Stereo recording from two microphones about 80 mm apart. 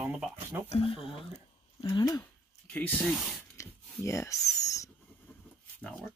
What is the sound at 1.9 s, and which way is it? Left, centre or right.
Speech, left.